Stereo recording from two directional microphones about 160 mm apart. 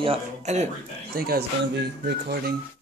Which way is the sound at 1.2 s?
80° right.